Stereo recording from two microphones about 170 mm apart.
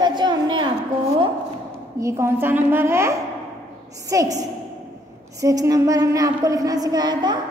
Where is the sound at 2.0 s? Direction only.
15° right (ahead or behind).